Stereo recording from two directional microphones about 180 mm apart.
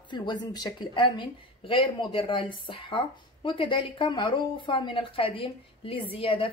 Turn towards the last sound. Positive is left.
turn(degrees=30)  # may be behind; listen again after turning